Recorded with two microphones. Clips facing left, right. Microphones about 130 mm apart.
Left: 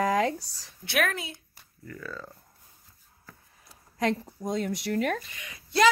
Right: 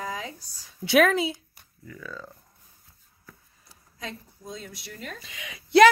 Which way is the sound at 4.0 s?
75° left (ahead or behind).